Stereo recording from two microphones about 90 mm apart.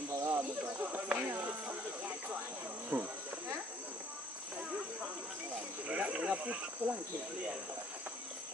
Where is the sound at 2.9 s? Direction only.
20° right (ahead or behind).